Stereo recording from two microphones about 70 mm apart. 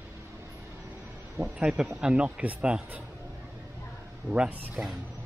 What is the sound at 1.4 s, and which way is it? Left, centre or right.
Speech, centre.